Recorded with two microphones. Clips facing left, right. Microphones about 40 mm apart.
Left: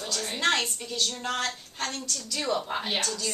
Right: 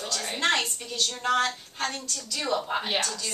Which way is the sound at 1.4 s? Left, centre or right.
Centre.